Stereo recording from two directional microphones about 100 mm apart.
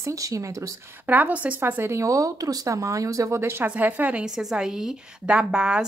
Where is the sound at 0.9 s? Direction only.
20° right (ahead or behind).